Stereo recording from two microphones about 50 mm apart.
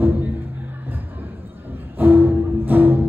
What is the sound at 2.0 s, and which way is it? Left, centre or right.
Music, right.